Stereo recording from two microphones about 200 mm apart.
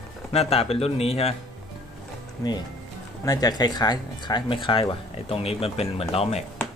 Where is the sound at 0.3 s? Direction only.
30° left (ahead or behind).